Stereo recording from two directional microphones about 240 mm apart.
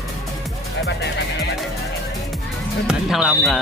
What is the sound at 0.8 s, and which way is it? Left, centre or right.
Music, left.